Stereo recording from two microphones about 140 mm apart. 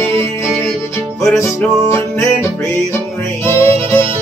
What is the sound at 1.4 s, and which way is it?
Music, 20° left (ahead or behind).